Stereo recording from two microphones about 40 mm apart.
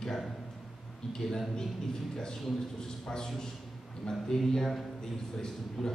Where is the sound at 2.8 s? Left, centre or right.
Centre.